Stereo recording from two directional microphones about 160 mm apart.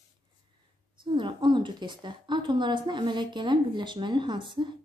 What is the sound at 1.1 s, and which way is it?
A woman's voice, 30° right (ahead or behind).